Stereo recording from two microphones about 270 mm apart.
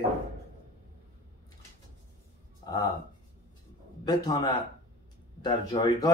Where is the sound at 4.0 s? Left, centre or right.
Centre.